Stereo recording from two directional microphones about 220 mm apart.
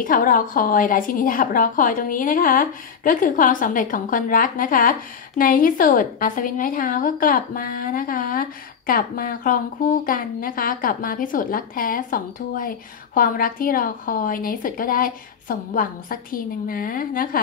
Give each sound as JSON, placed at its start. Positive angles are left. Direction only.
{"t": 0.0, "sound": "a woman's voice", "side_deg": 40}